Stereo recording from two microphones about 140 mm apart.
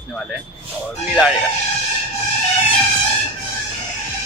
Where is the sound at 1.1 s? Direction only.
10° right (ahead or behind).